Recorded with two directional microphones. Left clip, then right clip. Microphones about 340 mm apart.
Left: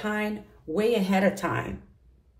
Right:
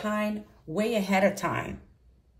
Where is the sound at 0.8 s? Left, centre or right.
Centre.